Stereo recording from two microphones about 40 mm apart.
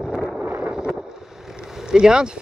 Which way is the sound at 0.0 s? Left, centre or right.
Centre.